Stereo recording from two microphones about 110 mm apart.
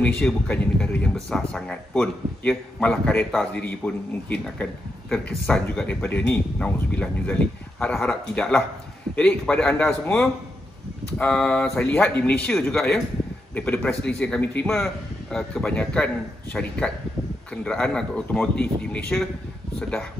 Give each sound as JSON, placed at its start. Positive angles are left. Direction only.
{"t": 0.0, "sound": "a man's voice", "side_deg": 10}
{"t": 5.9, "sound": "speech", "side_deg": 20}
{"t": 11.8, "sound": "speech", "side_deg": 15}
{"t": 17.6, "sound": "speech", "side_deg": 10}